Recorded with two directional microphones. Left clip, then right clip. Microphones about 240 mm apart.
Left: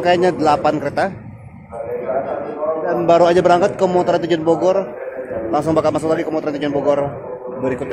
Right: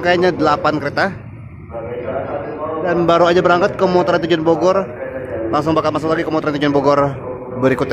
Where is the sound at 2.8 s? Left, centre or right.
Centre.